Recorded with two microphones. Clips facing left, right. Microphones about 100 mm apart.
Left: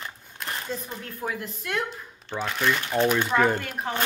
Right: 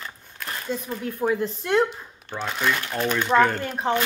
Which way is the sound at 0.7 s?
Centre (ahead or behind).